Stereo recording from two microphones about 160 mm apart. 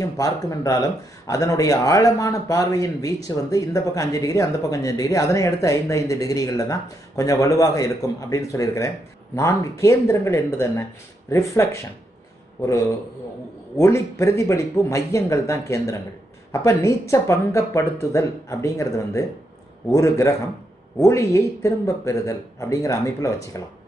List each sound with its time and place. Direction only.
0.0 s speech: 20° left (ahead or behind)